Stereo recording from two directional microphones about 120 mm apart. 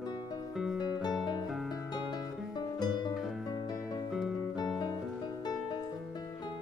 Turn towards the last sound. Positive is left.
turn(degrees=35)  # may be behind; listen again after turning